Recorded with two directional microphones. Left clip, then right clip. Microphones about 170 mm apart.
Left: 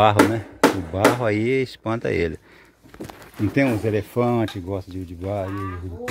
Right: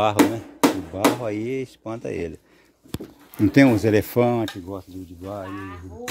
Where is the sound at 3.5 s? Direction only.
60° right (ahead or behind).